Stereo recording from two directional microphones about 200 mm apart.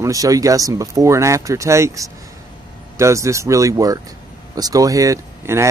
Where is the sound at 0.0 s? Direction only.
15° right (ahead or behind).